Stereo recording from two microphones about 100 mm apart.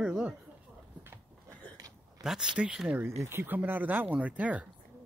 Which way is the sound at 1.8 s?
40° right (ahead or behind).